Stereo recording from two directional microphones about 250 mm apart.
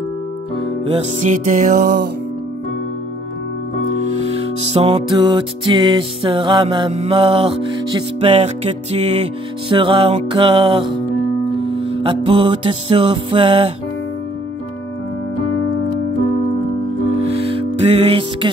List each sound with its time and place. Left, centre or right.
0.6 s music: right
3.9 s music: right
17.8 s music: right